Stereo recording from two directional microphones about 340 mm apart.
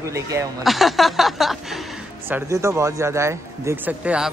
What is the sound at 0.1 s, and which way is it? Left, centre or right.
A man's voice, centre.